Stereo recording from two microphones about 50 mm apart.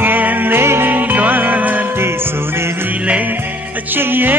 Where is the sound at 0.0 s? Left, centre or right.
Right.